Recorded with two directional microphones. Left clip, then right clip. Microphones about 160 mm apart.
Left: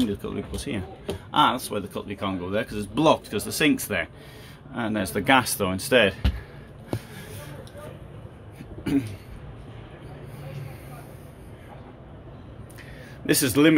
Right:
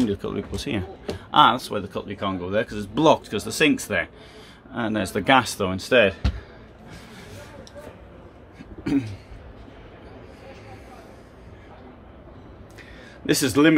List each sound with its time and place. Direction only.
0.0 s speech: 35° right (ahead or behind); by 6.1 s 10° right (ahead or behind)
13.3 s speech: 10° right (ahead or behind)